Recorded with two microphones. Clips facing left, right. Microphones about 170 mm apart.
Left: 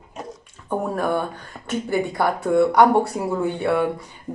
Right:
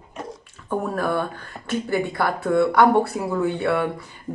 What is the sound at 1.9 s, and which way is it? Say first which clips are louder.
Speech: left 2 dB; 15° left (ahead or behind).